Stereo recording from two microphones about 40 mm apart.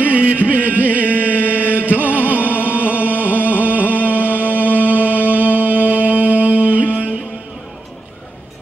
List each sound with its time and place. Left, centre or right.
0.0 s chant: right
1.9 s music: right